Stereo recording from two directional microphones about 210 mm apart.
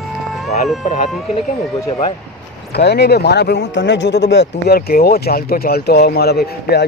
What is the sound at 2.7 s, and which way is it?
Speech, 50° left (ahead or behind).